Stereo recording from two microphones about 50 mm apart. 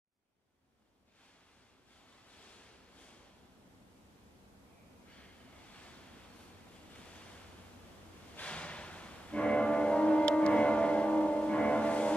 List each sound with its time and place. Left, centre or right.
2.2 s a sound: left
5.7 s waves: left
8.4 s music: left